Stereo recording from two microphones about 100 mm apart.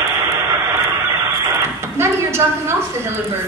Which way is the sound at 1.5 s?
25° right (ahead or behind).